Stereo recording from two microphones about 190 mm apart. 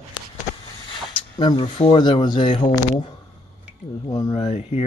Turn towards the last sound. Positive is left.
turn(degrees=35)  # may be behind; listen again after turning